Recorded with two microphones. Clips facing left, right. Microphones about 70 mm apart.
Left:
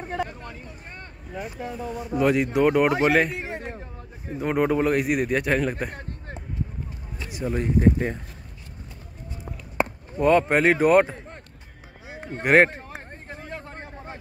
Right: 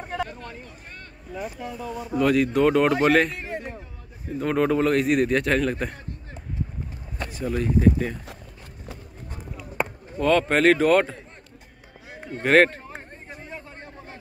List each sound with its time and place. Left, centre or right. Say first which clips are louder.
0.1 s a sound: even; left
1.3 s speech: even; left
2.0 s a man's voice: right 1 dB; centre
7.2 s speech: even; centre
10.1 s speech: left 2 dB; left
10.5 s a man's voice: even; centre
12.4 s a man's voice: even; centre
13.5 s a sound: left 3 dB; left